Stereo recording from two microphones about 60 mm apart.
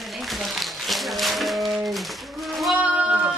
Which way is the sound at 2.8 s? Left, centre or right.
Centre.